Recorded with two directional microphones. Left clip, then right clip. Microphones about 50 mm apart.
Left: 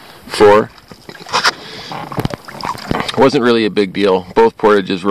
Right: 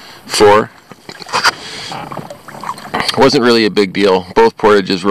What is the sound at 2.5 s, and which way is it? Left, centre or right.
Pig, left.